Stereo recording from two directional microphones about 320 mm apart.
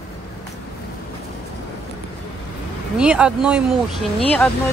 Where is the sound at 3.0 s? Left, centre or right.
Centre.